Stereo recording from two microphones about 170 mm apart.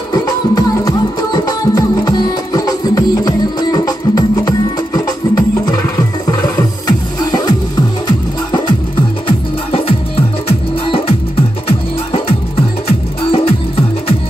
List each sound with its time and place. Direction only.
0.1 s music: 20° left (ahead or behind)
6.5 s music: 25° left (ahead or behind)